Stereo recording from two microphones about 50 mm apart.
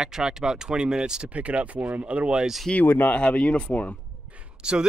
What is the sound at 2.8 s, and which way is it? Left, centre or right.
Speech, left.